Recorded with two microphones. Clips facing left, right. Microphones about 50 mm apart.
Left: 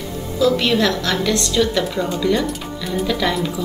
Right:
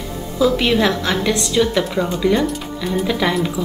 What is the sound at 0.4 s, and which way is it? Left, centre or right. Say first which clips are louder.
A woman's voice: right 1 dB; centre.